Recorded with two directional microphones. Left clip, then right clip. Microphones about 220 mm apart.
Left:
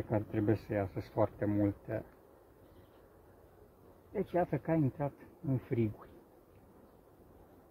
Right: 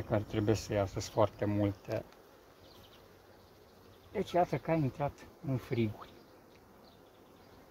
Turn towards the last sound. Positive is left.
turn(degrees=-5)  # may be behind; listen again after turning